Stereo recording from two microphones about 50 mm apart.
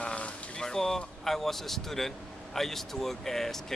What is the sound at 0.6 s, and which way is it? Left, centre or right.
Speech, centre.